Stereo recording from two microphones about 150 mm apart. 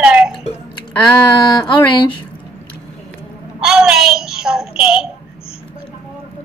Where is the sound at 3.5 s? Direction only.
5° right (ahead or behind).